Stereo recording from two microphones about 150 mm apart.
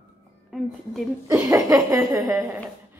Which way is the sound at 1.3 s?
20° right (ahead or behind).